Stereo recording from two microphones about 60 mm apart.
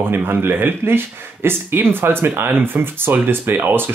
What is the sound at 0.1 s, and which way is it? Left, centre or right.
Speech, right.